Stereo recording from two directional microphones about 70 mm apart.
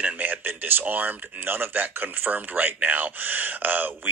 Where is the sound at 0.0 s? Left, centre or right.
Right.